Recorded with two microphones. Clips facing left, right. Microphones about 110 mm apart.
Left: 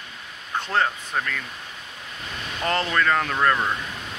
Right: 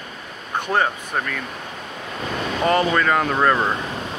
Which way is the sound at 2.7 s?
10° right (ahead or behind).